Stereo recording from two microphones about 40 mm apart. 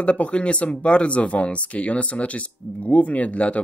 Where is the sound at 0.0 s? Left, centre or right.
Left.